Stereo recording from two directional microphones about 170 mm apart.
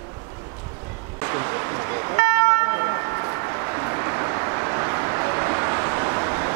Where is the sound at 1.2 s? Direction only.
20° right (ahead or behind).